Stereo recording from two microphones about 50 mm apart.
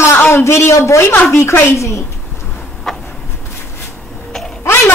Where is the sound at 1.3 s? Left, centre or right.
Left.